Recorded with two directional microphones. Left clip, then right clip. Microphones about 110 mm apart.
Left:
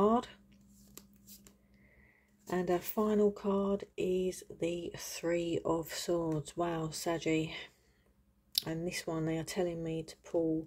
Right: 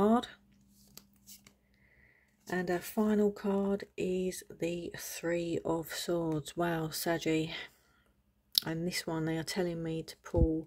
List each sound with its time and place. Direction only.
0.0 s a sound: 30° right (ahead or behind)
2.4 s speech: 20° right (ahead or behind)
3.3 s speech: 35° right (ahead or behind)
6.3 s speech: 50° right (ahead or behind)
8.7 s speech: 45° right (ahead or behind)